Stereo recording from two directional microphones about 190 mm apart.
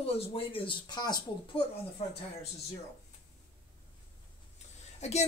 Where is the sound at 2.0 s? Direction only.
35° left (ahead or behind).